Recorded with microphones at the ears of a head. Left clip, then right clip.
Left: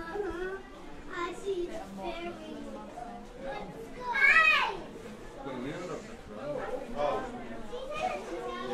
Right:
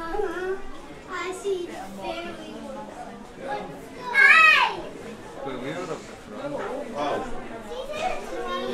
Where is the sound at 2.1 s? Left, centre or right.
Right.